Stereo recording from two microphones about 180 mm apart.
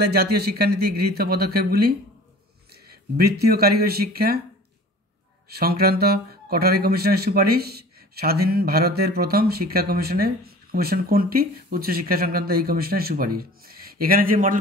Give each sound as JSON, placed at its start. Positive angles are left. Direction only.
{"t": 0.0, "sound": "speech", "side_deg": -60}
{"t": 5.5, "sound": "speech", "side_deg": -60}